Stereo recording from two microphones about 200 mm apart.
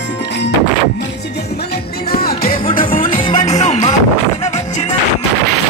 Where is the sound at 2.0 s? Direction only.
50° left (ahead or behind).